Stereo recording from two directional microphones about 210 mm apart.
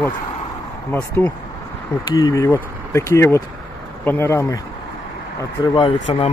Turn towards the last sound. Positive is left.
turn(degrees=25)  # may be behind; listen again after turning